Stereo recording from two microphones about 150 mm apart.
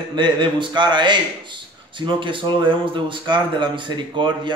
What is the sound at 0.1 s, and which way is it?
Speech, 30° right (ahead or behind).